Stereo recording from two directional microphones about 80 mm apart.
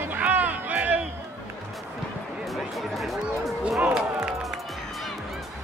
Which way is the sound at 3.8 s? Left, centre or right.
Centre.